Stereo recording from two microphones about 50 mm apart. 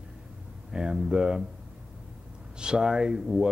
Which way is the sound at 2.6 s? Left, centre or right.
Centre.